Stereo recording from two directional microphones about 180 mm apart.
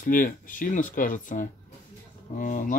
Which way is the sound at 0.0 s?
50° left (ahead or behind).